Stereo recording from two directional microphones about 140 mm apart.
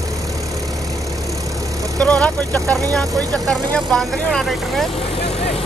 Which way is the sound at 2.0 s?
10° left (ahead or behind).